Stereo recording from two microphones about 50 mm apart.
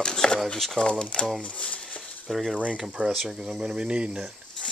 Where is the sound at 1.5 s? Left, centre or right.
Left.